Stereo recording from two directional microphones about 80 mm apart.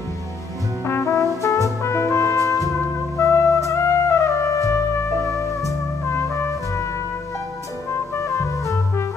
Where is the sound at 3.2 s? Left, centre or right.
Left.